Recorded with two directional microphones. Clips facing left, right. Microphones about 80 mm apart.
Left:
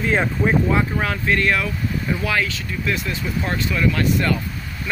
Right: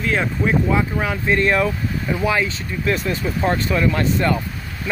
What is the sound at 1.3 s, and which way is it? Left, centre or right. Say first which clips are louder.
Speech: right 4 dB; right.